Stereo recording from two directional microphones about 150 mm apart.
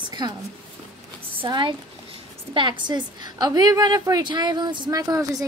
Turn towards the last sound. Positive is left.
turn(degrees=-20)  # may be behind; listen again after turning